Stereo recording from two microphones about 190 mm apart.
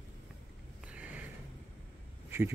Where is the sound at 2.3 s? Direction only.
10° right (ahead or behind).